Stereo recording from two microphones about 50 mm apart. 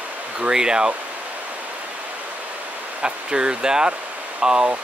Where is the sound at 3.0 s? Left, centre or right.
Centre.